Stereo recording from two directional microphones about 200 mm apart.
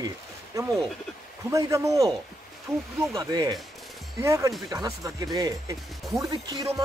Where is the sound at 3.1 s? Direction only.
20° right (ahead or behind).